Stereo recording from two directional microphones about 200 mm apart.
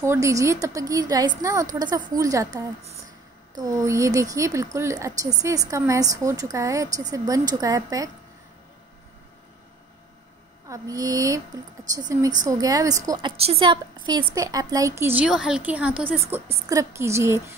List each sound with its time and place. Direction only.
0.0 s a woman's voice: 15° right (ahead or behind)
10.7 s a woman's voice: 15° right (ahead or behind)